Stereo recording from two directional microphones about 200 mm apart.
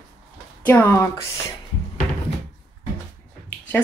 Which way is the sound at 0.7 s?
10° left (ahead or behind).